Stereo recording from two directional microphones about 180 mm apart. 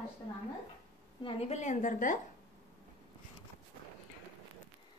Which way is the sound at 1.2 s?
35° left (ahead or behind).